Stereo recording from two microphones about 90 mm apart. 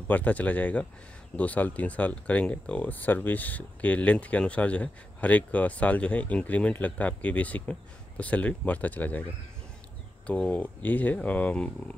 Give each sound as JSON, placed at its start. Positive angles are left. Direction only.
{"t": 0.1, "sound": "speech", "side_deg": 15}
{"t": 10.2, "sound": "speech", "side_deg": 15}